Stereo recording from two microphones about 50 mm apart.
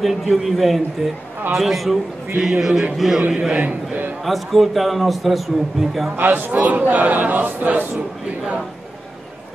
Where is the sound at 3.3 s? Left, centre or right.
Right.